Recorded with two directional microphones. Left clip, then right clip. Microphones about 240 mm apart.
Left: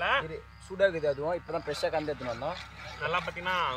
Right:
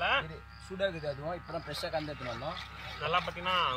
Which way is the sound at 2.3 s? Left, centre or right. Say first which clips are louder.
Left 4 dB; centre.